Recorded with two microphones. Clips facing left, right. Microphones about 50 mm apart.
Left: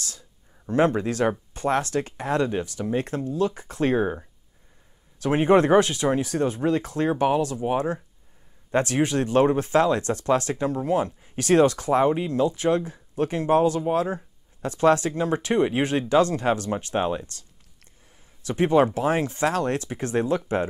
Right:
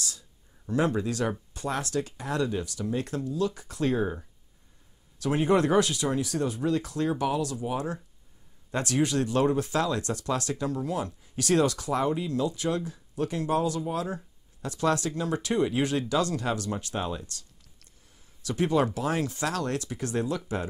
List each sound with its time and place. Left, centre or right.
0.7 s speech: left